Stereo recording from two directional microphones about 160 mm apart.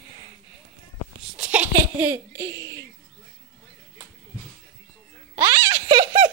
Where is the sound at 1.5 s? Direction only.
10° right (ahead or behind).